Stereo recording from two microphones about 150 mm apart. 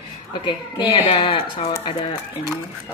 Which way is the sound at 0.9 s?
40° left (ahead or behind).